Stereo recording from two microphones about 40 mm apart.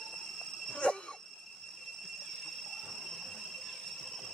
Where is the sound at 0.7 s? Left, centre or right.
Left.